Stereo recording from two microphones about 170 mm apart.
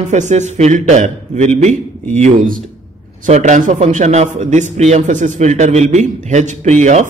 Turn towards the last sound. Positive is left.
turn(degrees=-45)  # may be behind; listen again after turning